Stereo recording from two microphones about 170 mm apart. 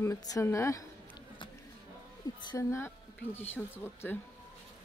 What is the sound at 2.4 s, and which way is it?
A woman's voice, 20° left (ahead or behind).